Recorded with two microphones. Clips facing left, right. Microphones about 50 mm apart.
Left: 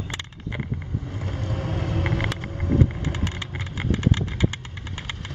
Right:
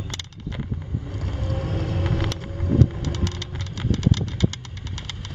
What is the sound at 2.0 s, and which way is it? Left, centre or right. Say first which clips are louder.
Vehicle: even; centre.